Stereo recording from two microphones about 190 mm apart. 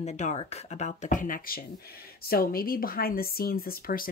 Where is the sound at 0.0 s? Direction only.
35° left (ahead or behind).